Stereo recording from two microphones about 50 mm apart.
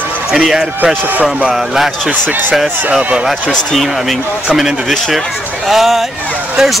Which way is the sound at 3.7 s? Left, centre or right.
Centre.